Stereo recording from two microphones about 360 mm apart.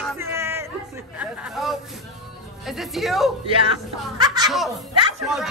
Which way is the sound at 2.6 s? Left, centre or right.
Centre.